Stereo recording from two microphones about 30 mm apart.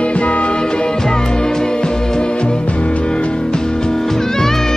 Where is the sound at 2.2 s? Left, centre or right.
Left.